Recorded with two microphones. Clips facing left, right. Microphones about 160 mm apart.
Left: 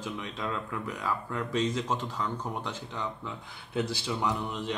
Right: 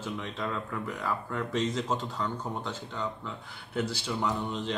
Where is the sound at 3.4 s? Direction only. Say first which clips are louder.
Left 1 dB; 20° left (ahead or behind).